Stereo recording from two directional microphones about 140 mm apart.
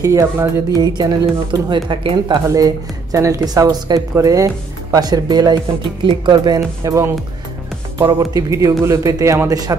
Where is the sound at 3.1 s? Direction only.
25° right (ahead or behind).